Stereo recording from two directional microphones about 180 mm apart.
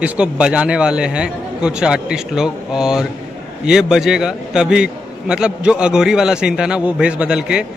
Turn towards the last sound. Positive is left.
turn(degrees=-5)  # may be behind; listen again after turning